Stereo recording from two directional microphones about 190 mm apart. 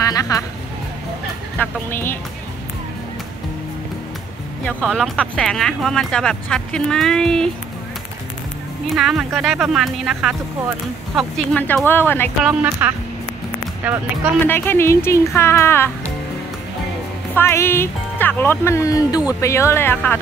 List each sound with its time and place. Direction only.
0.1 s music: 20° left (ahead or behind)
1.6 s speech: 10° left (ahead or behind)
4.6 s speech: 5° left (ahead or behind)
8.9 s speech: 5° right (ahead or behind)
12.8 s speech: 10° right (ahead or behind)
14.4 s speech: 10° left (ahead or behind)
17.4 s speech: 15° left (ahead or behind)